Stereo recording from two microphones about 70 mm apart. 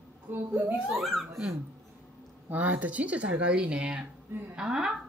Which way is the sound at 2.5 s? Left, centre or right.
Right.